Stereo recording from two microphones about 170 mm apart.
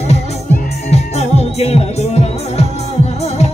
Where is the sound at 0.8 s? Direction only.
40° left (ahead or behind).